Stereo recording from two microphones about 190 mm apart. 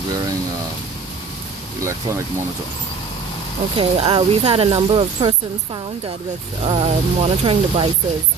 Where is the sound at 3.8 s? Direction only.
30° right (ahead or behind).